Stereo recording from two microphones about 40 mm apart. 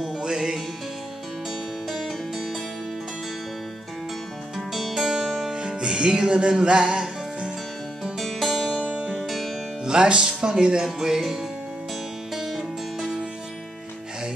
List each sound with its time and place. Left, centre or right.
0.2 s music: centre
1.9 s music: centre
4.6 s music: centre
5.6 s music: right
8.2 s music: centre
9.8 s speech: centre
12.4 s music: centre